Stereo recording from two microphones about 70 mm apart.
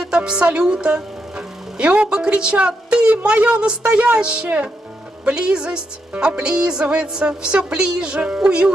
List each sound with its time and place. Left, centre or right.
0.0 s a woman's voice: centre